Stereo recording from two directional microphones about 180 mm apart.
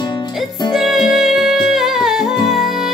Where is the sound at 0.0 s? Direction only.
25° left (ahead or behind).